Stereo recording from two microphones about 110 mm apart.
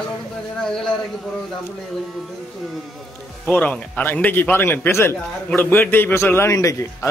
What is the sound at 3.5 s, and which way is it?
A man's voice, 15° left (ahead or behind).